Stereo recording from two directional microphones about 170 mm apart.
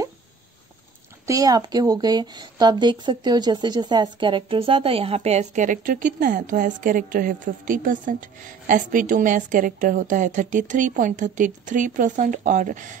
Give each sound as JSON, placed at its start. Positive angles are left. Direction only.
{"t": 1.2, "sound": "speech", "side_deg": -20}